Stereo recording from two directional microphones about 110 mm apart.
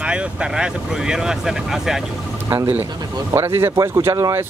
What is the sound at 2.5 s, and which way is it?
Speech, 25° right (ahead or behind).